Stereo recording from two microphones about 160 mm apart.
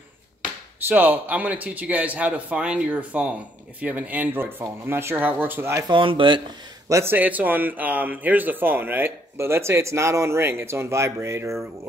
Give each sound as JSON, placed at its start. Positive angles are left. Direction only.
{"t": 0.8, "sound": "speech", "side_deg": -10}
{"t": 5.9, "sound": "speech", "side_deg": -30}
{"t": 6.9, "sound": "speech", "side_deg": -15}